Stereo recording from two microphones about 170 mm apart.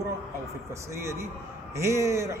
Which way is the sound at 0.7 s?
15° right (ahead or behind).